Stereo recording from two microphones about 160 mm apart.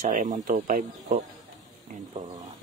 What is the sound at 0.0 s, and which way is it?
Speech, 55° right (ahead or behind).